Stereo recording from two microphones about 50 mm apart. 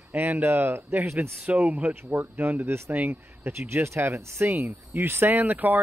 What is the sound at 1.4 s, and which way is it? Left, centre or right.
Speech, right.